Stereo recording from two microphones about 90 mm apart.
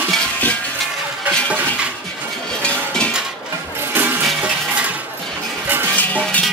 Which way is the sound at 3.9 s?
20° right (ahead or behind).